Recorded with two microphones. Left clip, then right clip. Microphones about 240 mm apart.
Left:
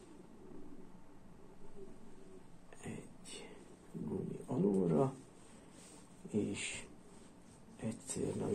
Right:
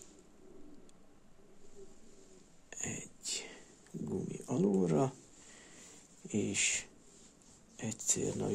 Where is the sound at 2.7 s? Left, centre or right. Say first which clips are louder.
Right 7 dB; right.